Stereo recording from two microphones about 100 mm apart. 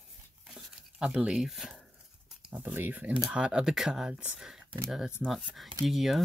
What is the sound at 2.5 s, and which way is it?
Speech, 15° right (ahead or behind).